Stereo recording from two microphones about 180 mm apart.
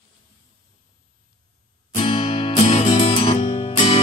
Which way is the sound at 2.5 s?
40° left (ahead or behind).